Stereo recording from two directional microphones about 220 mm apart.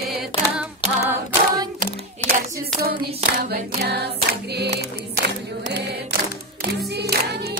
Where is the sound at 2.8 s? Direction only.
45° right (ahead or behind).